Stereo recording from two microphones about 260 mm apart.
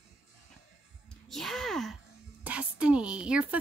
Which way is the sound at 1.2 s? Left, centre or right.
Centre.